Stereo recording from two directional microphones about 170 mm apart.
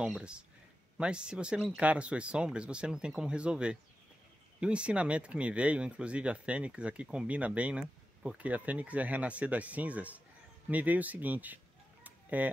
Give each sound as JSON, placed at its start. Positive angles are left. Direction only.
{"t": 0.0, "sound": "speech", "side_deg": -5}
{"t": 10.7, "sound": "chicken", "side_deg": -10}